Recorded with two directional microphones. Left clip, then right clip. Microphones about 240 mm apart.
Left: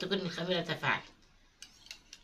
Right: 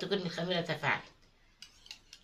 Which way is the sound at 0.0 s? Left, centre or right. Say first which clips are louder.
Even; centre.